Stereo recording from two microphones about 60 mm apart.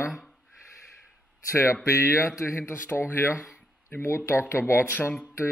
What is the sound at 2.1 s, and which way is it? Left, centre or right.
Speech, left.